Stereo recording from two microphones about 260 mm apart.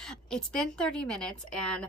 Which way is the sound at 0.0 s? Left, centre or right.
Centre.